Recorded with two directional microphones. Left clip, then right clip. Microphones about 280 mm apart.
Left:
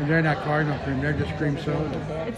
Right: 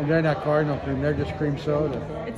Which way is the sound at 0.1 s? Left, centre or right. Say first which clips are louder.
Right 2 dB; centre.